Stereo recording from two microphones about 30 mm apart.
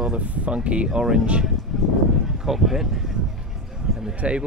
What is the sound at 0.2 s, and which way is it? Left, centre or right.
Speech, right.